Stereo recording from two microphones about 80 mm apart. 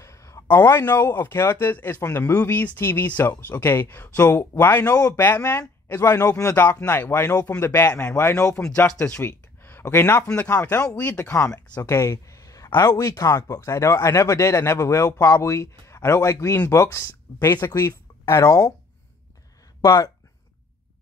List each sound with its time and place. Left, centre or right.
0.0 s a sound: left
0.5 s speech: left
6.1 s a man's voice: left
6.5 s speech: left
8.2 s speech: left
8.5 s speech: centre
9.6 s a sound: left
10.3 s speech: centre
11.3 s a man's voice: left
11.8 s a sound: left
12.8 s speech: left
13.3 s a man's voice: left
18.4 s speech: left
19.8 s speech: left